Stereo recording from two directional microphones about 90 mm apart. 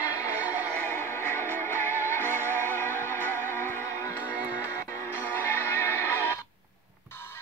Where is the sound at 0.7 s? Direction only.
25° left (ahead or behind).